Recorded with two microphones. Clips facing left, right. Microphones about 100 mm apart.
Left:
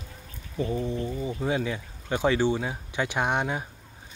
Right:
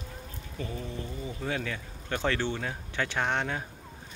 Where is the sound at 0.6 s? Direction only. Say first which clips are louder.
Left 9 dB; 20° left (ahead or behind).